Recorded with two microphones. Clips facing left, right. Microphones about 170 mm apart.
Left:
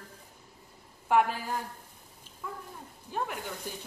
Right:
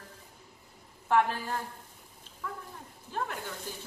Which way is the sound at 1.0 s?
10° left (ahead or behind).